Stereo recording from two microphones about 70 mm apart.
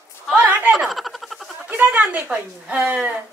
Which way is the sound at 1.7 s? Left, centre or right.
Right.